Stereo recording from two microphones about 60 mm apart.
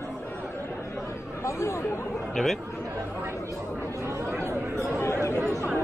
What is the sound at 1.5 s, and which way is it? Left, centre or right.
Chatter, left.